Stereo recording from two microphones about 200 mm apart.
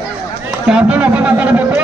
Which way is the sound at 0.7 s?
5° right (ahead or behind).